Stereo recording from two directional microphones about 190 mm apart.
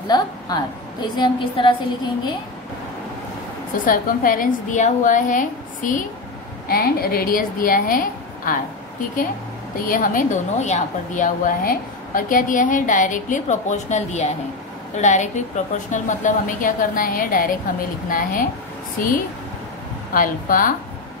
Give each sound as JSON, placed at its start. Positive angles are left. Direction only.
{"t": 0.1, "sound": "a woman's voice", "side_deg": 20}
{"t": 3.8, "sound": "a woman's voice", "side_deg": 45}
{"t": 9.8, "sound": "a woman's voice", "side_deg": 45}